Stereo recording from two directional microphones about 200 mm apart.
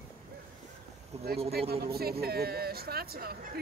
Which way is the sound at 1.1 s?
30° right (ahead or behind).